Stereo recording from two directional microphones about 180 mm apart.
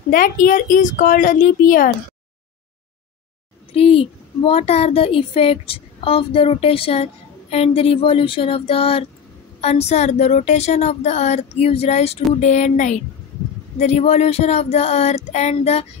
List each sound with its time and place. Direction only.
0.1 s speech: 50° left (ahead or behind)
3.7 s speech: 30° left (ahead or behind)